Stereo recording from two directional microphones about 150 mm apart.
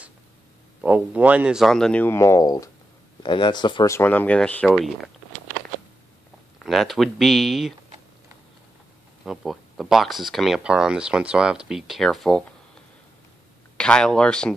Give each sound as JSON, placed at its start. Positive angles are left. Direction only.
{"t": 0.7, "sound": "speech", "side_deg": -10}
{"t": 3.9, "sound": "speech", "side_deg": 15}
{"t": 6.6, "sound": "speech", "side_deg": 0}
{"t": 9.2, "sound": "speech", "side_deg": 0}
{"t": 13.7, "sound": "speech", "side_deg": 5}